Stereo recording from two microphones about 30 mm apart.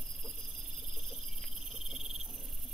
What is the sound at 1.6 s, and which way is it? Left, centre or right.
Cricket, centre.